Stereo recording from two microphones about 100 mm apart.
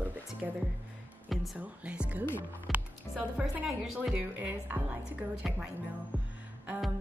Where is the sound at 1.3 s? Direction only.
Centre (ahead or behind).